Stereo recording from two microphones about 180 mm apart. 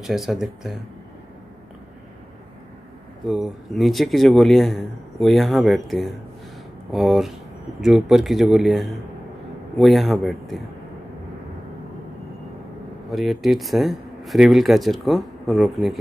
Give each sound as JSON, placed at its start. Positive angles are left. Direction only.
{"t": 0.0, "sound": "speech", "side_deg": 0}
{"t": 3.3, "sound": "speech", "side_deg": 0}
{"t": 13.1, "sound": "speech", "side_deg": 0}